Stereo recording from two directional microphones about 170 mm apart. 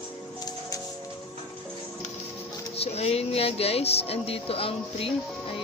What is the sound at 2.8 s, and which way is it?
Speech, 35° left (ahead or behind).